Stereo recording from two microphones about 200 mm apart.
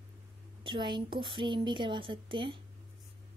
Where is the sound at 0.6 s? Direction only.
25° right (ahead or behind).